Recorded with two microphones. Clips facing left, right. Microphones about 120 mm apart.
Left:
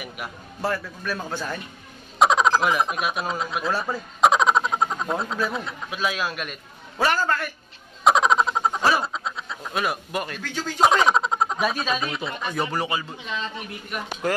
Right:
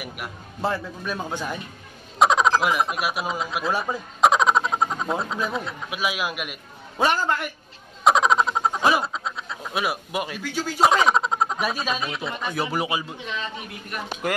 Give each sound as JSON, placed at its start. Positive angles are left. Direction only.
{"t": 0.6, "sound": "a man's voice", "side_deg": -20}
{"t": 2.1, "sound": "frog", "side_deg": 0}
{"t": 3.7, "sound": "speech", "side_deg": -15}
{"t": 4.2, "sound": "a sound", "side_deg": 0}
{"t": 5.9, "sound": "speech", "side_deg": -10}
{"t": 8.0, "sound": "a sound", "side_deg": 0}
{"t": 9.0, "sound": "speech", "side_deg": 0}